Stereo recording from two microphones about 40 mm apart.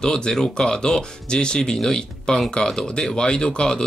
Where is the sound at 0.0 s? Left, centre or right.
Centre.